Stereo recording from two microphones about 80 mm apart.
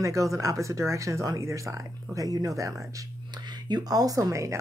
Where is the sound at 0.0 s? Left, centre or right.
Right.